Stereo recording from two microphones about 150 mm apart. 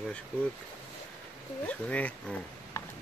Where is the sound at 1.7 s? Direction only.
10° left (ahead or behind).